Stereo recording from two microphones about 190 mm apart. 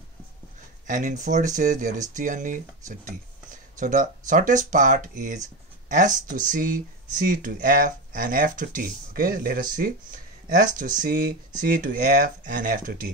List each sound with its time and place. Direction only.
0.8 s speech: 40° right (ahead or behind)